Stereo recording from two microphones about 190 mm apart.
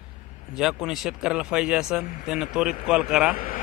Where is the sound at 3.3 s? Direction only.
50° left (ahead or behind).